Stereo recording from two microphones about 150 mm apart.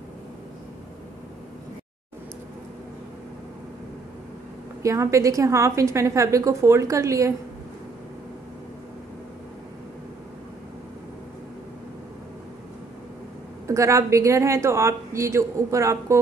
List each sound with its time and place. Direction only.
4.8 s a woman's voice: 20° right (ahead or behind)
13.7 s a woman's voice: 20° right (ahead or behind)